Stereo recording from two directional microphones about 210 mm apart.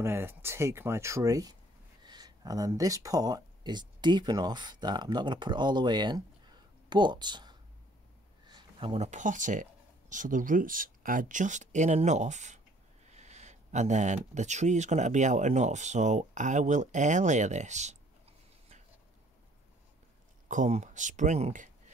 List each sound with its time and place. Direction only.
0.0 s speech: 10° right (ahead or behind); by 17.9 s 35° right (ahead or behind)
20.4 s speech: 35° right (ahead or behind)